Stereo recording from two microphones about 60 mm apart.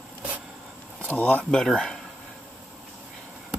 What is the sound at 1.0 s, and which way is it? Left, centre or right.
Speech, left.